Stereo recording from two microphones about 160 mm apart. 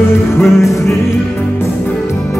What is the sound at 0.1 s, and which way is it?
Music, 15° left (ahead or behind).